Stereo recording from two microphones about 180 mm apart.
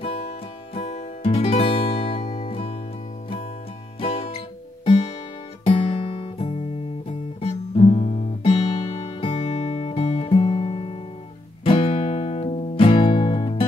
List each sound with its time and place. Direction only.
0.0 s music: 35° left (ahead or behind)
4.0 s music: 30° left (ahead or behind)
5.7 s music: 30° left (ahead or behind)